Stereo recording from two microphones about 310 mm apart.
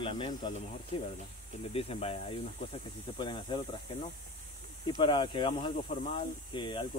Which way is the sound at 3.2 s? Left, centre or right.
Centre.